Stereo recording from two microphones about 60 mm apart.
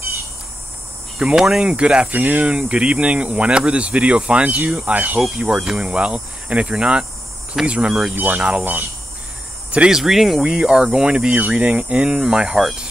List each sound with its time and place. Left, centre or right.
1.3 s speech: centre
2.1 s speech: right
5.5 s speech: centre
8.1 s speech: right
8.6 s speech: right
9.8 s speech: centre